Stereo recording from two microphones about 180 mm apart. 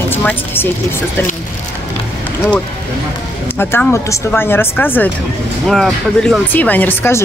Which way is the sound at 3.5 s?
10° left (ahead or behind).